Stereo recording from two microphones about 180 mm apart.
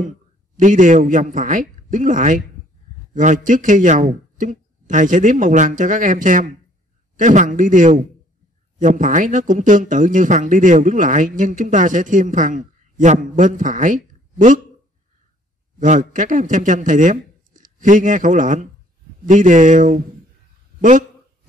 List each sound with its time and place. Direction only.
0.6 s speech: 45° right (ahead or behind)
15.8 s a man's voice: 45° right (ahead or behind)